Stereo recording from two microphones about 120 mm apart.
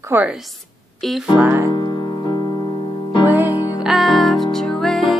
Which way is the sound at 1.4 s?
15° right (ahead or behind).